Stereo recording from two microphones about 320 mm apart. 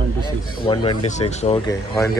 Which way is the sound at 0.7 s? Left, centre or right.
Centre.